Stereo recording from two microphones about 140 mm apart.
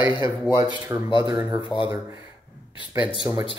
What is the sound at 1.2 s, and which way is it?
Speech, 25° right (ahead or behind).